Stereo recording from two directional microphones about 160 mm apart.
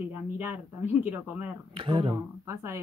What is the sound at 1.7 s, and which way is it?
Speech, 30° right (ahead or behind).